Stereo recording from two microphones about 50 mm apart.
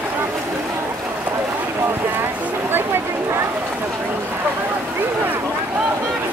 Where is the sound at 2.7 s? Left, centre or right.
Right.